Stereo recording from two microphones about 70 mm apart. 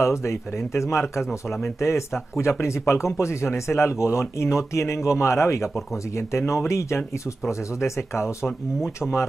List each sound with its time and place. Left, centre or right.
0.0 s speech: left